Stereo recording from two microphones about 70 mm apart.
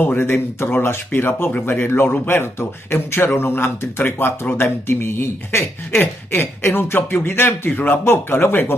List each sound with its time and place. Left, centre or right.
0.0 s a man's voice: left